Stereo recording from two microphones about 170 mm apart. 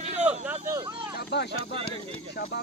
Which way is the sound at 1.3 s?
80° left.